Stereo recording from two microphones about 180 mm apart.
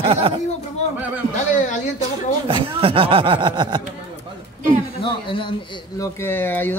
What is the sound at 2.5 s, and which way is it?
Speech, 30° right (ahead or behind).